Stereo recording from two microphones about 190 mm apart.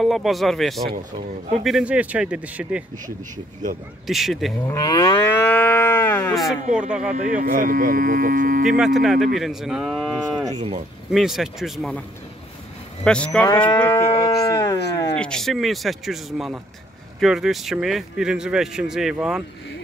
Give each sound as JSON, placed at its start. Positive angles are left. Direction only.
{"t": 0.0, "sound": "speech", "side_deg": 0}
{"t": 3.6, "sound": "speech", "side_deg": -40}
{"t": 4.1, "sound": "speech", "side_deg": 0}
{"t": 4.6, "sound": "livestock", "side_deg": 20}
{"t": 6.3, "sound": "speech", "side_deg": -5}
{"t": 7.2, "sound": "speech", "side_deg": -40}
{"t": 8.7, "sound": "speech", "side_deg": 0}
{"t": 13.0, "sound": "speech", "side_deg": 5}
{"t": 13.8, "sound": "livestock", "side_deg": 15}
{"t": 14.4, "sound": "a sound", "side_deg": 20}
{"t": 15.1, "sound": "speech", "side_deg": 5}